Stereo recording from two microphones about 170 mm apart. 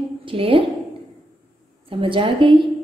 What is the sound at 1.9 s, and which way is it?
Speech, 30° right (ahead or behind).